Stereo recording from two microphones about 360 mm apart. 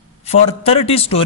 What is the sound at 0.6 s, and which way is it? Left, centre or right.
Speech, centre.